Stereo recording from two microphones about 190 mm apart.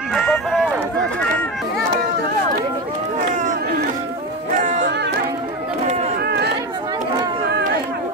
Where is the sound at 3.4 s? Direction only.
45° right (ahead or behind).